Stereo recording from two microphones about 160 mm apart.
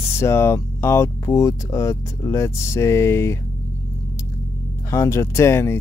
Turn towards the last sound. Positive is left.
turn(degrees=15)  # may be behind; listen again after turning